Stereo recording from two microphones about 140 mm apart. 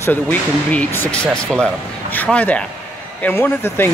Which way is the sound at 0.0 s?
10° left (ahead or behind).